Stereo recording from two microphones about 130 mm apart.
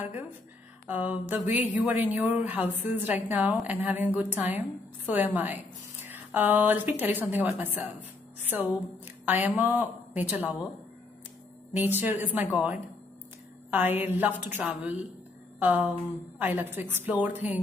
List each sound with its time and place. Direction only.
0.0 s a sound: 10° right (ahead or behind)
0.8 s a woman's voice: 15° right (ahead or behind)
11.7 s a woman's voice: 15° right (ahead or behind)